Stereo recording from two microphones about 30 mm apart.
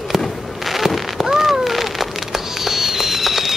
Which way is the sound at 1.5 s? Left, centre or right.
Centre.